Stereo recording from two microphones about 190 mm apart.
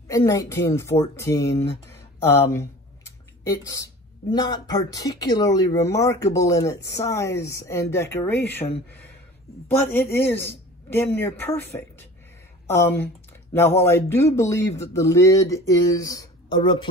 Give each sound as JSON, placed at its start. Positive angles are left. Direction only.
{"t": 0.1, "sound": "speech", "side_deg": 15}
{"t": 9.9, "sound": "speech", "side_deg": 10}